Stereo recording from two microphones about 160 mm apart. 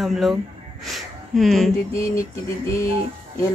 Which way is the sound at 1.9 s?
15° left (ahead or behind).